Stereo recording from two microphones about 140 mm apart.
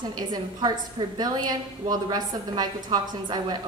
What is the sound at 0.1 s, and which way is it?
A woman's voice, 30° right (ahead or behind).